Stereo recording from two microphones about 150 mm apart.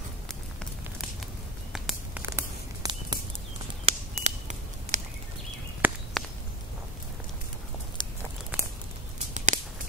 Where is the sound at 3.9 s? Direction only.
45° right (ahead or behind).